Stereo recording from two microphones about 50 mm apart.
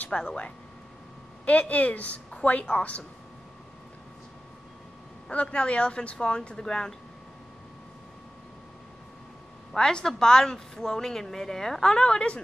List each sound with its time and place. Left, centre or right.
0.1 s a woman's voice: centre
5.3 s a woman's voice: left
9.7 s a woman's voice: centre